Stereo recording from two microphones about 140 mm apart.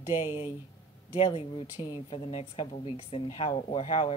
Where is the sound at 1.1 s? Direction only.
40° left (ahead or behind).